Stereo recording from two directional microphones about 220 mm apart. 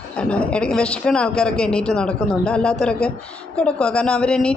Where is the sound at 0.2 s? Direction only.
5° left (ahead or behind).